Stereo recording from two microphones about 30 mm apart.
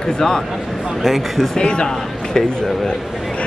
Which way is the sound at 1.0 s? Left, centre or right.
Centre.